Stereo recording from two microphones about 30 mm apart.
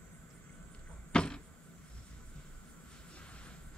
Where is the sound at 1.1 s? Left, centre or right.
Left.